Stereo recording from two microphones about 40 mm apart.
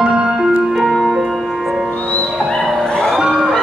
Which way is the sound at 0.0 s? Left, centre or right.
Centre.